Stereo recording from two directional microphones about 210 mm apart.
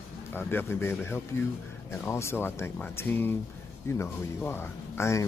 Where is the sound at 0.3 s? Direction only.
10° left (ahead or behind).